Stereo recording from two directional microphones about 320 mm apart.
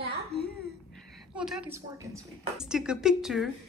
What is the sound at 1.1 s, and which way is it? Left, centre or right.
A woman's voice, centre.